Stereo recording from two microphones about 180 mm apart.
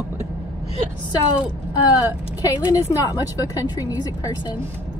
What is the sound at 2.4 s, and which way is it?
A woman's voice, 20° left (ahead or behind).